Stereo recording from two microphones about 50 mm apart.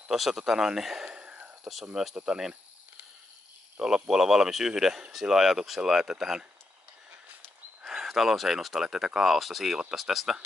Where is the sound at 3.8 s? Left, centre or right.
Centre.